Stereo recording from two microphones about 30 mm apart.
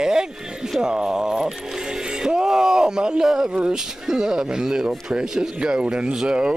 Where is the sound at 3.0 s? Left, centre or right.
Right.